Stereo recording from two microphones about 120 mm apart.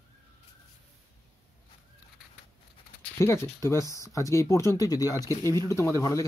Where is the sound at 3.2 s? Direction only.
25° left (ahead or behind).